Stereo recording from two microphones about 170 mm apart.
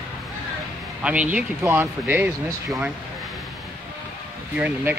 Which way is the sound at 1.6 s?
15° right (ahead or behind).